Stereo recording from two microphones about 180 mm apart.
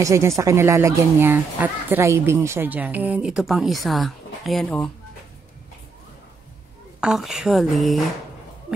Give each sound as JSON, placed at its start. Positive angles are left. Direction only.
{"t": 0.0, "sound": "a woman's voice", "side_deg": -15}
{"t": 7.0, "sound": "a woman's voice", "side_deg": -5}